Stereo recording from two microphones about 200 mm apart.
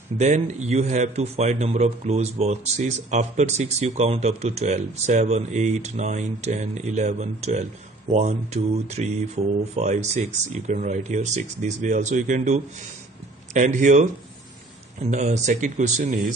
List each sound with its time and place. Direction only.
0.2 s a man's voice: 35° right (ahead or behind)
15.0 s a man's voice: 35° right (ahead or behind)